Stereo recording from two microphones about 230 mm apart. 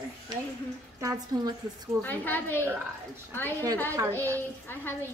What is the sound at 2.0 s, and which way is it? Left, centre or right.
Speech, centre.